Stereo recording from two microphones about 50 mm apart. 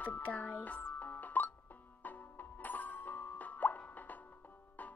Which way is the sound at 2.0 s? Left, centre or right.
Left.